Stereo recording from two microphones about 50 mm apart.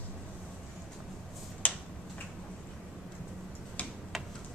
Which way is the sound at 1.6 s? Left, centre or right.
Left.